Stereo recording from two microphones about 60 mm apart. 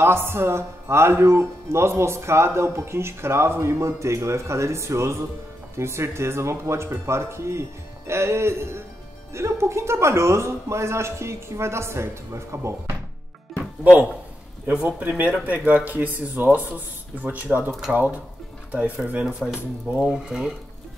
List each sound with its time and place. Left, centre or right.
0.0 s speech: right
13.6 s music: right
14.7 s speech: right
19.2 s speech: centre